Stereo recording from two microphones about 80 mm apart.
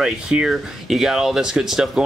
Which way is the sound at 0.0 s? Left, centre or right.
Centre.